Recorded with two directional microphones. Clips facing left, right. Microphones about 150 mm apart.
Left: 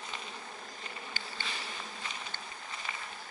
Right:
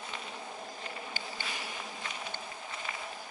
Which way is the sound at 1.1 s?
10° right (ahead or behind).